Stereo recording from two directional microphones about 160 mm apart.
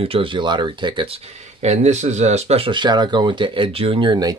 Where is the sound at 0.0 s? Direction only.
35° right (ahead or behind).